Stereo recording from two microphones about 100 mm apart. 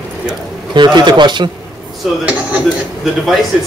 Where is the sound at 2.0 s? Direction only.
Centre (ahead or behind).